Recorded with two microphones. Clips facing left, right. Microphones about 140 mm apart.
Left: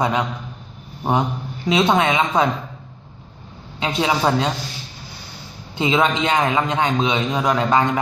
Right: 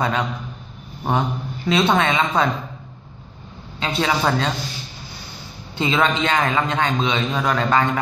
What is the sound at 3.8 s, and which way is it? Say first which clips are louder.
Speech: left 1 dB; 15° left (ahead or behind).